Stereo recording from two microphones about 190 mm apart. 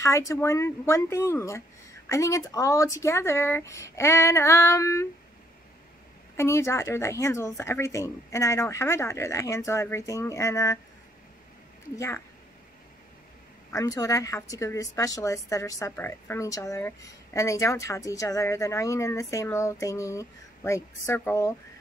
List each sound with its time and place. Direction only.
0.0 s a woman's voice: 15° left (ahead or behind)
6.3 s a woman's voice: 15° left (ahead or behind)
13.7 s a woman's voice: 20° left (ahead or behind)